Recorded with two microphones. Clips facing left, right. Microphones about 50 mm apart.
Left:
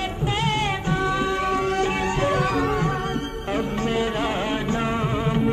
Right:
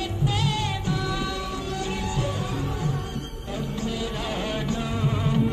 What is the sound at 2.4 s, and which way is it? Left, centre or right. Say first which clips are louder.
Music: left 8 dB; left.